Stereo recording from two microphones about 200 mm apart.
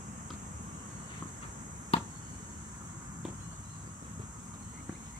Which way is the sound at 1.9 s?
30° left (ahead or behind).